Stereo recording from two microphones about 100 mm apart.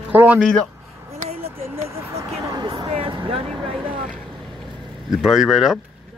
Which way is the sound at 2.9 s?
65° right (ahead or behind).